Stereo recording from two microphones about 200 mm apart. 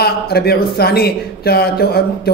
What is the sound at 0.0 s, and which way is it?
Speech, 50° left (ahead or behind).